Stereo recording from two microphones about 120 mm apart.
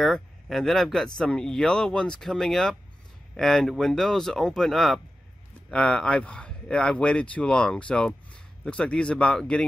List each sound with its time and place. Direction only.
0.0 s speech: centre (ahead or behind)